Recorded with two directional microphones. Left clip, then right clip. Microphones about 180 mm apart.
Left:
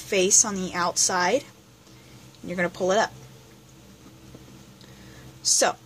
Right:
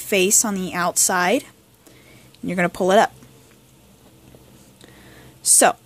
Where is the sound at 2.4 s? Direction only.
50° right (ahead or behind).